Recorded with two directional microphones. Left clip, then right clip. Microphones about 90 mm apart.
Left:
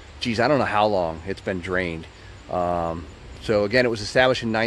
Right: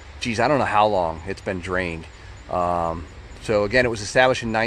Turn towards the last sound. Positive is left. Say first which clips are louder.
# right 1 dB
turn(degrees=30)  # may be behind; listen again after turning